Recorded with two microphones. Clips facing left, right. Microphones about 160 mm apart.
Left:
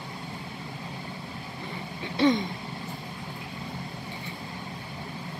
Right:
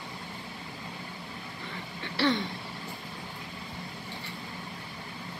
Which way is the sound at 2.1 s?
15° left (ahead or behind).